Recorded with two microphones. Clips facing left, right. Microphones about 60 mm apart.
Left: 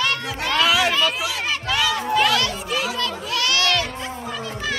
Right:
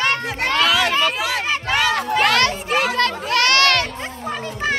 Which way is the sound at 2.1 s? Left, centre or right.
Right.